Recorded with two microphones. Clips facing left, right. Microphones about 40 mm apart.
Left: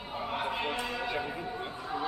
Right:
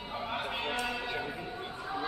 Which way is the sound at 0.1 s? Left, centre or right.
Centre.